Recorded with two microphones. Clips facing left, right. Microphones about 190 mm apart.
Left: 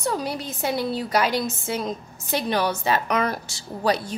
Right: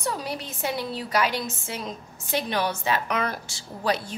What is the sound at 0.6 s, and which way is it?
A woman's voice, 40° left (ahead or behind).